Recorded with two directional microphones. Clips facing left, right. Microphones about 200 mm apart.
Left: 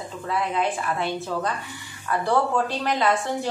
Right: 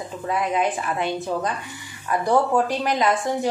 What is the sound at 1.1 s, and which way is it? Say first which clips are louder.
A woman's voice: right 2 dB; 15° right (ahead or behind).